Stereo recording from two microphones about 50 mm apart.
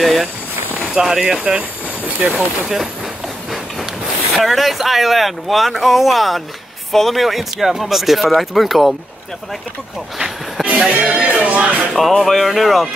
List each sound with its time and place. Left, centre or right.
0.0 s speech: centre
0.9 s speech: centre
2.0 s vehicle: right
2.3 s speech: centre
4.3 s speech: centre
10.6 s music: right
11.9 s speech: centre